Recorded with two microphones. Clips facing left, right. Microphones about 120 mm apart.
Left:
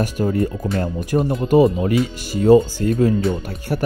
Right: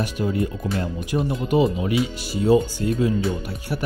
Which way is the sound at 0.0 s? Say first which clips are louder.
Left 4 dB; 45° left (ahead or behind).